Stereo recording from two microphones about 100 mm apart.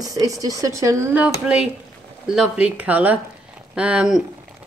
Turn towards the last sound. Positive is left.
turn(degrees=-10)  # may be behind; listen again after turning